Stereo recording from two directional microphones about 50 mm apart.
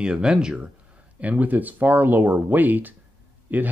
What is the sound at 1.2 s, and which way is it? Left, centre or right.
Speech, right.